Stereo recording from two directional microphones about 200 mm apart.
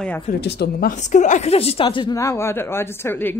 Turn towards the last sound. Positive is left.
turn(degrees=10)  # may be behind; listen again after turning